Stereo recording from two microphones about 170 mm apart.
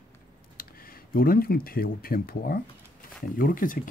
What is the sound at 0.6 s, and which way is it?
Speech, 60° left (ahead or behind).